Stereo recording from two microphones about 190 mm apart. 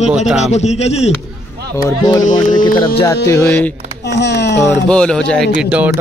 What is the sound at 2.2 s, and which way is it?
Speech, 45° left (ahead or behind).